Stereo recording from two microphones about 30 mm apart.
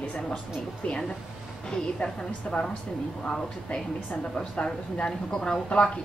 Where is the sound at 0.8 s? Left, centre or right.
Left.